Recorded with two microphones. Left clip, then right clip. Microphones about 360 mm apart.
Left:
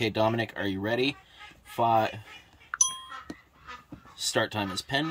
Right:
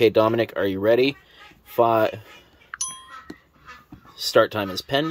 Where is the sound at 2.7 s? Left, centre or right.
Centre.